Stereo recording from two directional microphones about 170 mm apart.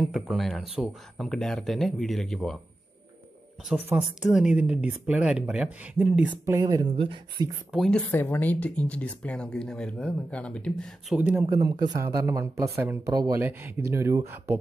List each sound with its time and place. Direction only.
0.0 s speech: centre (ahead or behind)
3.6 s speech: 10° right (ahead or behind); by 7.4 s 25° right (ahead or behind)
7.7 s speech: centre (ahead or behind)
8.1 s speech: 10° left (ahead or behind)
11.1 s speech: 10° right (ahead or behind)
11.5 s speech: 20° right (ahead or behind)